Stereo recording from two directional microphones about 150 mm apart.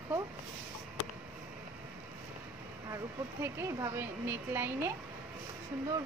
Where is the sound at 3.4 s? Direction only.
15° right (ahead or behind).